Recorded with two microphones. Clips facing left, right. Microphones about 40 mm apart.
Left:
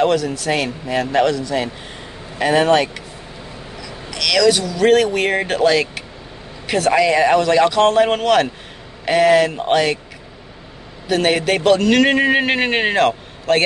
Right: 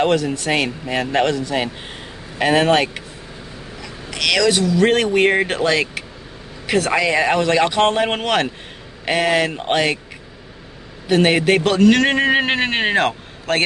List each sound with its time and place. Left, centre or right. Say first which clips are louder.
0.0 s a man's voice: left 1 dB; right
11.1 s a man's voice: right 2 dB; centre